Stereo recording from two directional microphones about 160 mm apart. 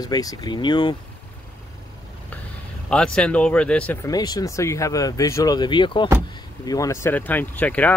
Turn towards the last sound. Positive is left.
turn(degrees=10)  # may be behind; listen again after turning